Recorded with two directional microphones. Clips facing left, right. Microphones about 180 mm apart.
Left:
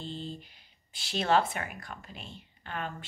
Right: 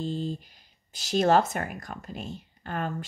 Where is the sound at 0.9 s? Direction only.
40° right (ahead or behind).